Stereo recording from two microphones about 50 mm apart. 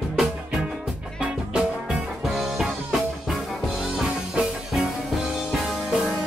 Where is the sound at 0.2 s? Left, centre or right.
Centre.